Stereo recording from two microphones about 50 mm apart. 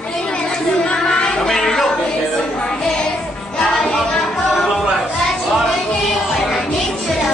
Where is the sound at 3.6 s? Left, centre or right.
Centre.